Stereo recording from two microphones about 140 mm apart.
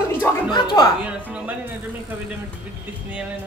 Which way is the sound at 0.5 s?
30° left (ahead or behind).